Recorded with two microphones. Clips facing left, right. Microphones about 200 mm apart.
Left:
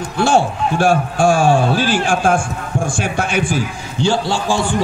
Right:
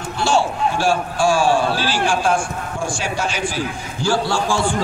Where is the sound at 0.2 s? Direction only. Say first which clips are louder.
Left 3 dB; 55° left (ahead or behind).